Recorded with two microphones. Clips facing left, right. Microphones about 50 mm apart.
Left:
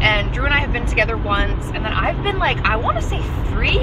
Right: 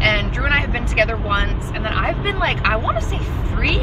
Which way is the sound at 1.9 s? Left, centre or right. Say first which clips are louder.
Left 1 dB; left.